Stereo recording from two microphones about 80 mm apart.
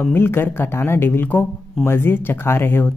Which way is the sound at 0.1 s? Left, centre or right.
Left.